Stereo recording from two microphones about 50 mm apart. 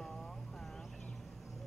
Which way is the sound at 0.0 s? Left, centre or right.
Centre.